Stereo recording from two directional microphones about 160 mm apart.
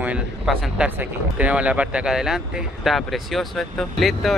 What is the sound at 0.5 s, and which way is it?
Speech, 5° right (ahead or behind).